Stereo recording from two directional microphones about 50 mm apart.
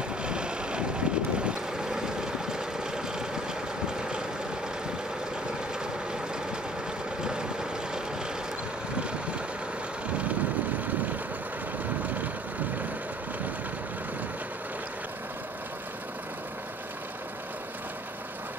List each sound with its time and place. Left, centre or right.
0.2 s vehicle: centre